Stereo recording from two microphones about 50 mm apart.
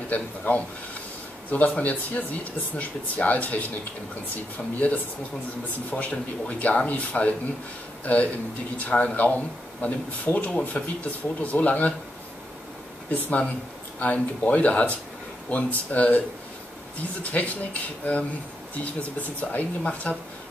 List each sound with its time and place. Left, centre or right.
0.1 s speech: left
13.1 s speech: left
17.2 s speech: left